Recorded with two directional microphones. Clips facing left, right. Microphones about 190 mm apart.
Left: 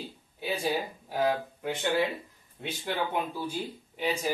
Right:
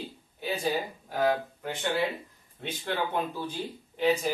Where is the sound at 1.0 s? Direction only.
10° left (ahead or behind).